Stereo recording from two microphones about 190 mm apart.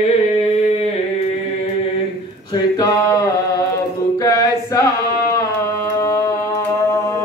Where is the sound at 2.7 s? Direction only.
20° left (ahead or behind).